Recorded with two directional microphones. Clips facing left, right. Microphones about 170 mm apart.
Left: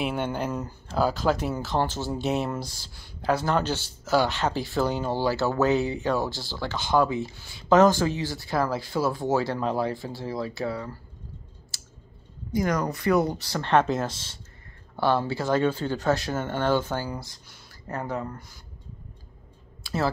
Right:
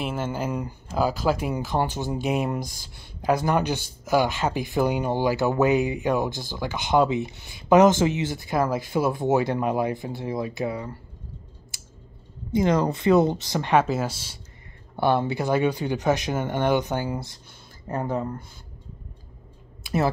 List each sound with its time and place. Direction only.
0.0 s speech: centre (ahead or behind); by 11.0 s 15° right (ahead or behind)
11.7 s clicking: 15° right (ahead or behind)
12.5 s speech: 25° right (ahead or behind)
19.8 s a sound: 20° right (ahead or behind)